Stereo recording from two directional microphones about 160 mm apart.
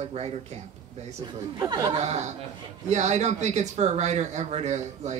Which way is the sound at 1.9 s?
45° right (ahead or behind).